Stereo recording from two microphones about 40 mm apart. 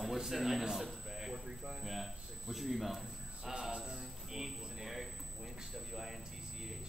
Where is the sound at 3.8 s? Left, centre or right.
Centre.